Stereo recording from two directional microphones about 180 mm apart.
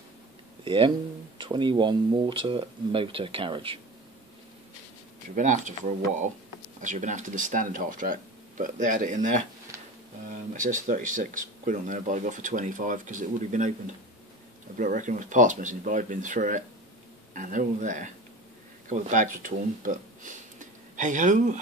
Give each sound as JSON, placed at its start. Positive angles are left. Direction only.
{"t": 0.7, "sound": "speech", "side_deg": -25}
{"t": 5.3, "sound": "speech", "side_deg": -45}
{"t": 10.5, "sound": "speech", "side_deg": -45}
{"t": 14.8, "sound": "speech", "side_deg": -45}